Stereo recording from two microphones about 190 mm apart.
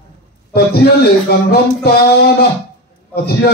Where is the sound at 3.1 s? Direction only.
55° left (ahead or behind).